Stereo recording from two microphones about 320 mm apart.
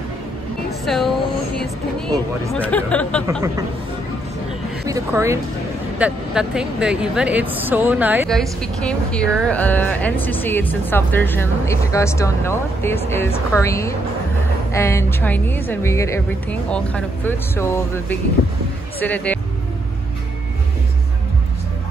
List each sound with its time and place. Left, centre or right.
0.8 s speech: centre
2.6 s speech: centre
4.8 s a woman's voice: centre